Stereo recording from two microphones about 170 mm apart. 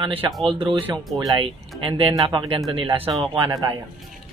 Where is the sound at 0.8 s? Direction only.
20° right (ahead or behind).